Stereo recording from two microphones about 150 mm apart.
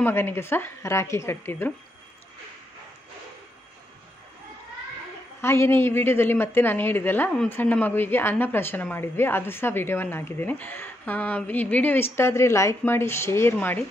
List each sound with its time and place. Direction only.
0.0 s a woman's voice: 15° left (ahead or behind)
5.4 s a woman's voice: 15° left (ahead or behind)